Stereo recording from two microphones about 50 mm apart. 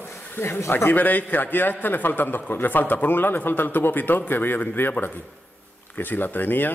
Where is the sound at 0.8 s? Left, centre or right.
Left.